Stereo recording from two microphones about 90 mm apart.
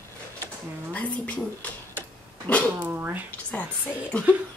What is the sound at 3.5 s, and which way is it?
Speech, 15° left (ahead or behind).